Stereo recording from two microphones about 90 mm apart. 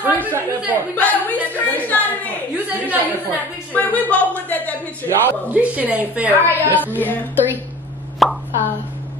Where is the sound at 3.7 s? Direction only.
20° left (ahead or behind).